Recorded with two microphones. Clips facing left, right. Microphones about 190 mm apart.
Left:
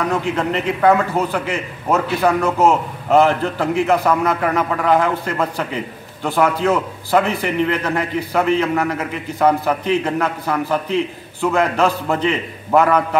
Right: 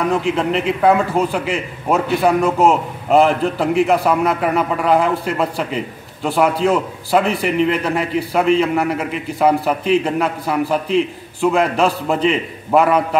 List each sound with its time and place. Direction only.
0.1 s a man's voice: centre (ahead or behind)
1.9 s a man's voice: 15° right (ahead or behind)
2.6 s a man's voice: centre (ahead or behind)
3.8 s a man's voice: 10° right (ahead or behind)